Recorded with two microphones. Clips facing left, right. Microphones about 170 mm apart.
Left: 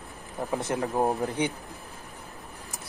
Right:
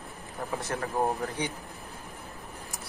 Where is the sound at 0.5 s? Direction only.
20° left (ahead or behind).